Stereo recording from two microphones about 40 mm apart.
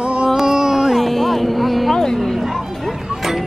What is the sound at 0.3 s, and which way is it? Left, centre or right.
Carnatic music, centre.